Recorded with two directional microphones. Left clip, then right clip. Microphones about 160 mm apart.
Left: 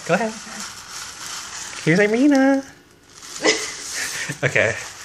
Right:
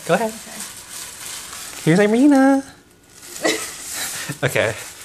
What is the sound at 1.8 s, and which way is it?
Speech, 20° right (ahead or behind).